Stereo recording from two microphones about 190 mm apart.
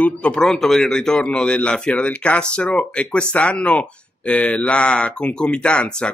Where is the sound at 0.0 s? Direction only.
5° left (ahead or behind).